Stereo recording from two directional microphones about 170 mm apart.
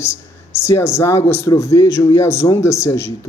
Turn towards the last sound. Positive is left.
turn(degrees=15)  # may be behind; listen again after turning